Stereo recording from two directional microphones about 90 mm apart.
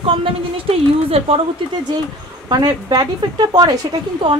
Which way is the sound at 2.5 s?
50° right (ahead or behind).